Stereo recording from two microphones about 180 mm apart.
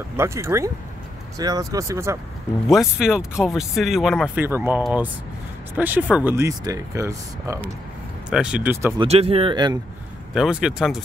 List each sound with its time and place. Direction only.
0.2 s speech: 15° right (ahead or behind)
2.7 s speech: 5° right (ahead or behind)
4.4 s speech: 10° right (ahead or behind)
8.3 s speech: 5° right (ahead or behind)
9.0 s speech: 35° right (ahead or behind)
10.3 s speech: 5° right (ahead or behind)